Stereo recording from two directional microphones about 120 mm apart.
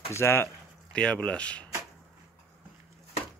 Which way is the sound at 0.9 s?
10° left (ahead or behind).